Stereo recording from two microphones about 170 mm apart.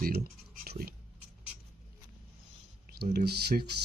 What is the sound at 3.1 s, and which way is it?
Speech, 70° right (ahead or behind).